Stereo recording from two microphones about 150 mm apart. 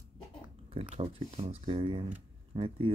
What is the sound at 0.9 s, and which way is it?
Speech, 40° right (ahead or behind).